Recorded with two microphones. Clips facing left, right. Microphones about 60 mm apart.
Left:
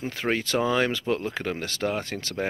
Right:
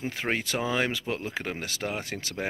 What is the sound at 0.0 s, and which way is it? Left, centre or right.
Speech, centre.